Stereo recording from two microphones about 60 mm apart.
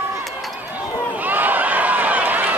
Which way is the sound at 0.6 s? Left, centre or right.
Right.